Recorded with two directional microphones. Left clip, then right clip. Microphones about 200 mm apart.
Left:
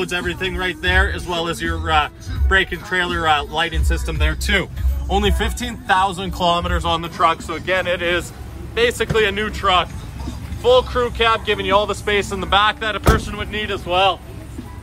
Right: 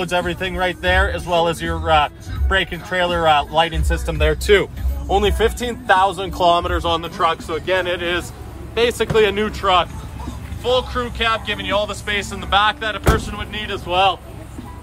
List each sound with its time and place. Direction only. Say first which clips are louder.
0.0 s a man's voice: right 2 dB; 45° right (ahead or behind); by 9.8 s 25° right (ahead or behind)
10.6 s speech: left 4 dB; 10° right (ahead or behind)